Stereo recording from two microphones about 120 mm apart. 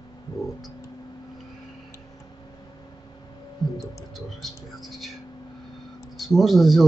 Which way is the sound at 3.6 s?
35° left (ahead or behind).